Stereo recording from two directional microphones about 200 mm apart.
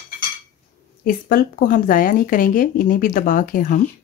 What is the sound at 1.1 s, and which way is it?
Speech, 45° left (ahead or behind).